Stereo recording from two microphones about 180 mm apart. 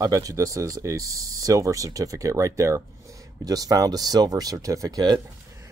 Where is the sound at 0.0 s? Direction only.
20° right (ahead or behind).